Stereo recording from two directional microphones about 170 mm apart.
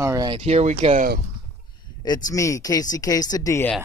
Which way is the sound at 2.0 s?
20° left (ahead or behind).